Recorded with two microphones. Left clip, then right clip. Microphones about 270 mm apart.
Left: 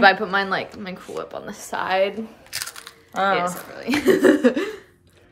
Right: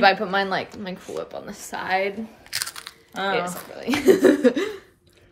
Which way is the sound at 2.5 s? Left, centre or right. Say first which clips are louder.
Right 2 dB; right.